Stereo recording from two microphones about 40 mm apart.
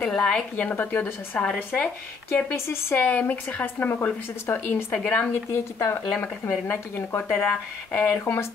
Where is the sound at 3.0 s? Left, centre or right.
Left.